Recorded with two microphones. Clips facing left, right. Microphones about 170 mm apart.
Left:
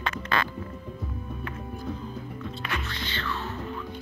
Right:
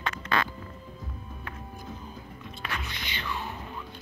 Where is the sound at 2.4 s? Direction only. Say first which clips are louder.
Left 2 dB; 15° right (ahead or behind).